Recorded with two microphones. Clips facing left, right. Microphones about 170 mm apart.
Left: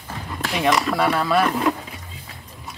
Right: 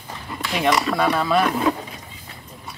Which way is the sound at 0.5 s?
Centre (ahead or behind).